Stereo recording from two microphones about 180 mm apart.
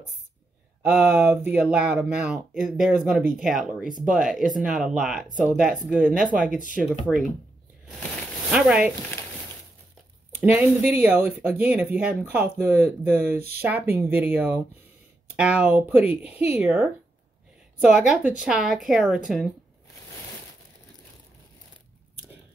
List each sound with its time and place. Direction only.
0.8 s speech: 10° right (ahead or behind)
6.1 s speech: 50° right (ahead or behind)
6.7 s speech: 10° right (ahead or behind)
8.5 s speech: 5° right (ahead or behind)
10.4 s speech: 10° right (ahead or behind)